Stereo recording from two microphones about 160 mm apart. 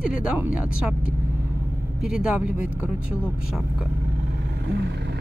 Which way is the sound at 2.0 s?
5° right (ahead or behind).